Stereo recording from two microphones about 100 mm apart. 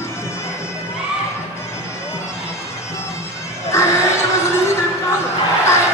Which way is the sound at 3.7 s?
30° left (ahead or behind).